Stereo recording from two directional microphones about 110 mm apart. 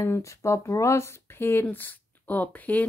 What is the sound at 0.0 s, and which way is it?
Speech, 25° left (ahead or behind).